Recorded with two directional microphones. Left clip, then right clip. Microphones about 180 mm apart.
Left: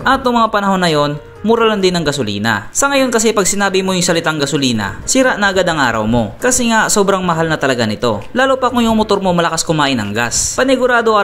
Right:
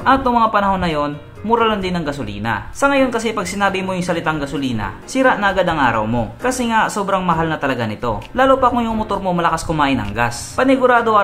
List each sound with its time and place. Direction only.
0.0 s speech: 35° left (ahead or behind)